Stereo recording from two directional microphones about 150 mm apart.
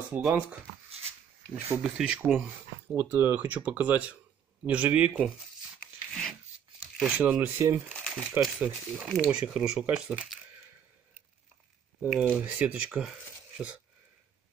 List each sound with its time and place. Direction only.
0.1 s speech: 10° right (ahead or behind)
0.8 s a sound: 40° right (ahead or behind)
1.8 s speech: 5° right (ahead or behind)
7.1 s speech: 10° right (ahead or behind)
7.9 s speech: centre (ahead or behind)
12.0 s speech: 5° right (ahead or behind)